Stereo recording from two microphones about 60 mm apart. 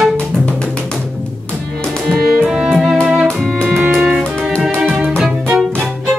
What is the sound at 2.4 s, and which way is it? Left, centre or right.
Music, centre.